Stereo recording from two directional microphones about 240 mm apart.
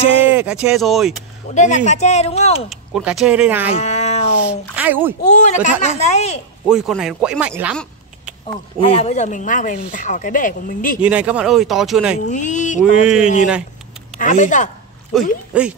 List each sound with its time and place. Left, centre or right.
0.3 s speech: centre
1.5 s speech: left
2.7 s speech: centre
3.7 s cat: left
4.7 s speech: centre
5.3 s speech: left
6.7 s speech: centre
8.7 s speech: left
11.0 s speech: centre
12.3 s speech: left
13.0 s speech: centre
14.1 s speech: left
15.1 s speech: centre